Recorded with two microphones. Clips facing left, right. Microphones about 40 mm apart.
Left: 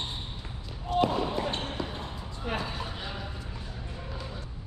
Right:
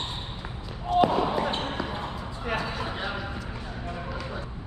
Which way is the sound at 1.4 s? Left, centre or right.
Centre.